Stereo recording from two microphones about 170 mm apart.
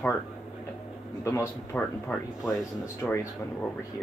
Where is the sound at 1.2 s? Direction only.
15° left (ahead or behind).